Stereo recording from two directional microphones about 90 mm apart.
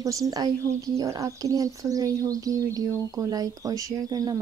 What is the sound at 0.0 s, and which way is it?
Speech, 40° right (ahead or behind).